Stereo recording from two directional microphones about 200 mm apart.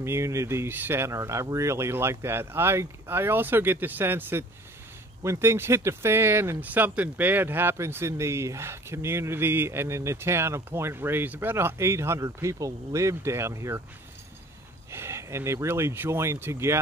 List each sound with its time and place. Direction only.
0.0 s speech: 15° right (ahead or behind)
14.9 s speech: 15° right (ahead or behind)